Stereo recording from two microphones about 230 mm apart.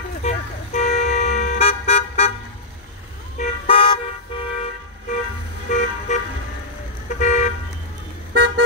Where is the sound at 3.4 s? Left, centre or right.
Left.